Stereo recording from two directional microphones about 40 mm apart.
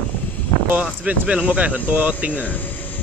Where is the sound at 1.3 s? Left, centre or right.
Right.